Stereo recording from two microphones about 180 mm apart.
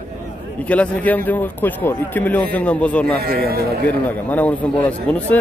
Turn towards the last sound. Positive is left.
turn(degrees=10)  # may be behind; listen again after turning